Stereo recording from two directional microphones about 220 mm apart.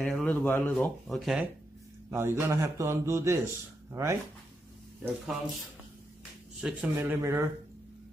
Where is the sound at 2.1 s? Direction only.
10° right (ahead or behind).